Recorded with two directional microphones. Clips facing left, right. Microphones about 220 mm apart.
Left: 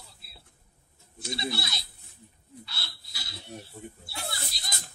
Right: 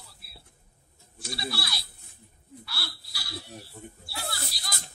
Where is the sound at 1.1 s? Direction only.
20° left (ahead or behind).